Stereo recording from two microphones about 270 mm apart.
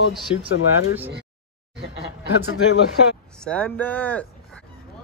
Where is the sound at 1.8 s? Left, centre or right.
Right.